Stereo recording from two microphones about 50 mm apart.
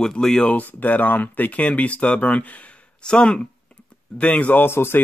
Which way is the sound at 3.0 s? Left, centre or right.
Centre.